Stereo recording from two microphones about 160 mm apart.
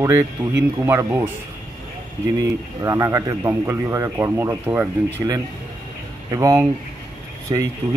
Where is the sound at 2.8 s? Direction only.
20° right (ahead or behind).